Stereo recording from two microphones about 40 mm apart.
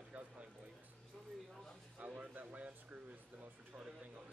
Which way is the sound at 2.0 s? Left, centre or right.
Right.